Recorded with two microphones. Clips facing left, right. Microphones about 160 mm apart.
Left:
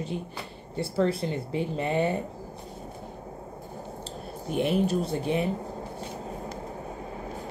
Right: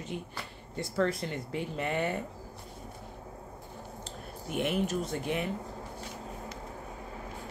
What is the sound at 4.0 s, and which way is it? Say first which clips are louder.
Speech: left 5 dB; 30° left (ahead or behind).